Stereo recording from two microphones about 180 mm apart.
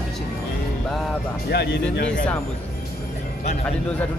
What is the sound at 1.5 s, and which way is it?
Speech, 65° left (ahead or behind).